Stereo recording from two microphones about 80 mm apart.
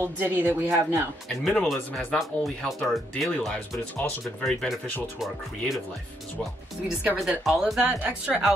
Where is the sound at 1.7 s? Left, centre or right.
Centre.